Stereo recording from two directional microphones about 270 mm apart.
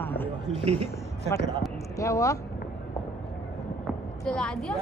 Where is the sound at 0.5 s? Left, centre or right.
Right.